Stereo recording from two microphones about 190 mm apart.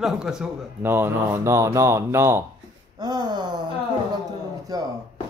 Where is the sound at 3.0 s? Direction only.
20° right (ahead or behind).